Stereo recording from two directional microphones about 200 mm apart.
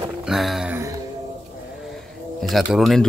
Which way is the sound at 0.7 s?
15° right (ahead or behind).